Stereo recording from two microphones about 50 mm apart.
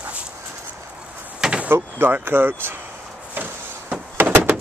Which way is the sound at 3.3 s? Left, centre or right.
Right.